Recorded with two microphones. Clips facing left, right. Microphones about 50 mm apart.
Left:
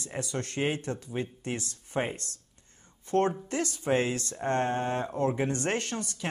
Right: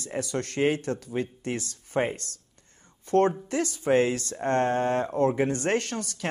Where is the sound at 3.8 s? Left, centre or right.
Right.